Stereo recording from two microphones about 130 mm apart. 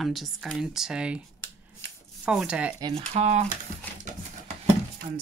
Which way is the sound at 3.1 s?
60° right (ahead or behind).